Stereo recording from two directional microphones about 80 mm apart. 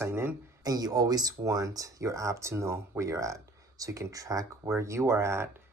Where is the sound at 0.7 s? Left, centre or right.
Right.